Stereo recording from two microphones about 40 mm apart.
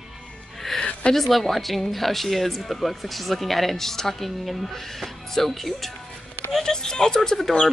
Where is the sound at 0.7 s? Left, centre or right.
Left.